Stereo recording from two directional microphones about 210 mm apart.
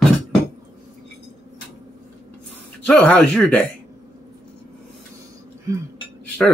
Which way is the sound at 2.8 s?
5° left (ahead or behind).